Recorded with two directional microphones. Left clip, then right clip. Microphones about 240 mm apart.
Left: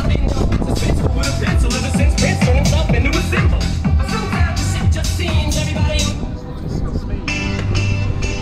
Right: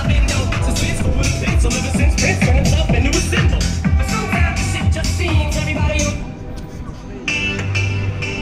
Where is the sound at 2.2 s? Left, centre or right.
Left.